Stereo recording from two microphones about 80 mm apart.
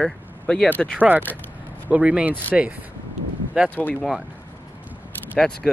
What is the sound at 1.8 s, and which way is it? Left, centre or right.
Speech, centre.